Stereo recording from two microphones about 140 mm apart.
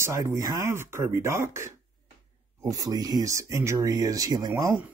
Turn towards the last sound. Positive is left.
turn(degrees=-25)  # may be behind; listen again after turning